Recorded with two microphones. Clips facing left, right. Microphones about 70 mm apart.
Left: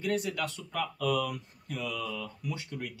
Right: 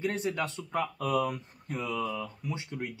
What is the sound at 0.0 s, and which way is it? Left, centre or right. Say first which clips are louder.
Speech: even; right.